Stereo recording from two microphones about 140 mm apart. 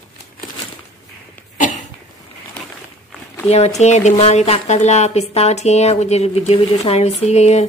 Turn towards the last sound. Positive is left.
turn(degrees=50)  # may be behind; listen again after turning